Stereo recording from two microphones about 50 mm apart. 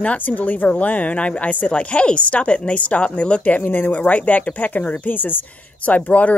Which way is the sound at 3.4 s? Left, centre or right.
Left.